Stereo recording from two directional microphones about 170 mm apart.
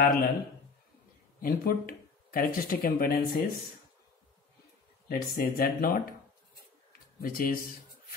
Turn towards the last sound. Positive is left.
turn(degrees=60)  # may be behind; listen again after turning